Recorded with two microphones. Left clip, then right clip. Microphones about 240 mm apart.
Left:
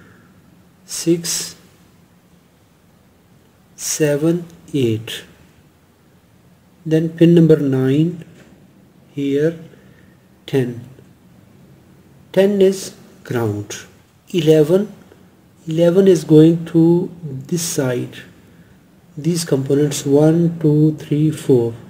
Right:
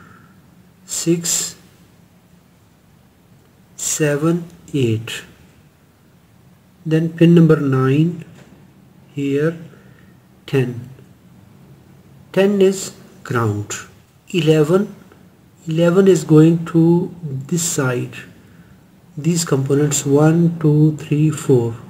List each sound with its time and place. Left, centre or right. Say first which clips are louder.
0.8 s a sound: left 1 dB; centre
3.9 s speech: left 1 dB; centre
6.9 s speech: left 1 dB; centre
12.3 s speech: left 1 dB; centre
19.2 s speech: left 1 dB; centre
21.5 s speech: left 1 dB; centre